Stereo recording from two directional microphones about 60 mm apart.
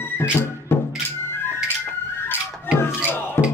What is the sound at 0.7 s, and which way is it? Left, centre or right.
Music, left.